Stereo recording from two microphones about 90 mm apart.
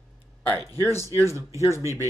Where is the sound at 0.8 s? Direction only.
30° left (ahead or behind).